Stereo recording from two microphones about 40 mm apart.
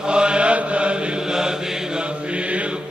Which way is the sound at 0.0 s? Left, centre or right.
Right.